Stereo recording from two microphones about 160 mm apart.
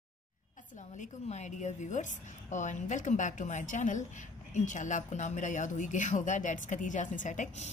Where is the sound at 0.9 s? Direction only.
45° left (ahead or behind).